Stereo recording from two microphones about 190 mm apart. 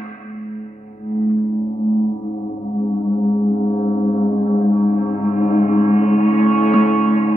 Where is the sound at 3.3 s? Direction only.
35° left (ahead or behind).